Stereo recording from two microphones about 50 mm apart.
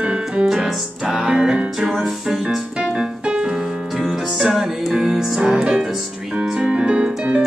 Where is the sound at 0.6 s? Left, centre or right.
Centre.